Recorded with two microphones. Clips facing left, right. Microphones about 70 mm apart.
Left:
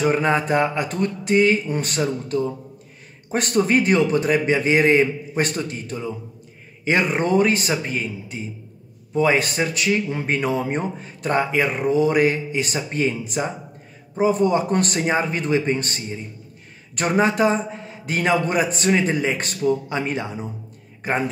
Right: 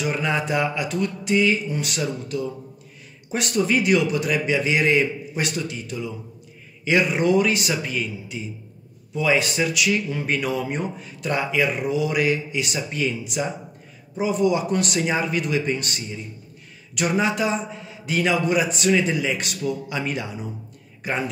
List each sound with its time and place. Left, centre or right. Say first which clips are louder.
0.0 s speech: left 5 dB; left